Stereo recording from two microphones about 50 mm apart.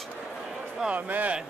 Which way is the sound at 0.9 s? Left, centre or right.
Right.